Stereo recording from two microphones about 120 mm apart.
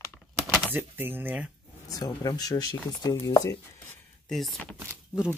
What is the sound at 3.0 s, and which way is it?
Chopping, 30° left (ahead or behind).